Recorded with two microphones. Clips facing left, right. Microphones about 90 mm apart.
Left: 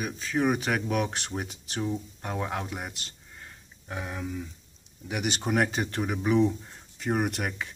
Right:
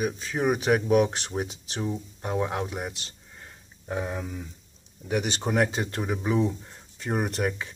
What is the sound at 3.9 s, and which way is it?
Speech, 10° right (ahead or behind).